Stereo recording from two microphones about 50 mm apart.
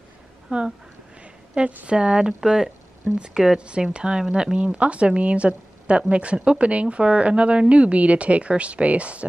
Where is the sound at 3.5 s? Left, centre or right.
Right.